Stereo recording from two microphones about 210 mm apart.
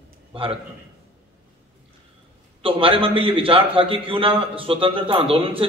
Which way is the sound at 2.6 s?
25° right (ahead or behind).